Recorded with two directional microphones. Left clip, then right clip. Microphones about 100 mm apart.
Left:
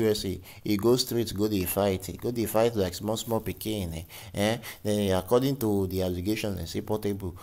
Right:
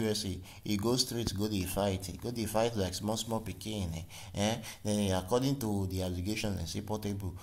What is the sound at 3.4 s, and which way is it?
Speech, 55° left (ahead or behind).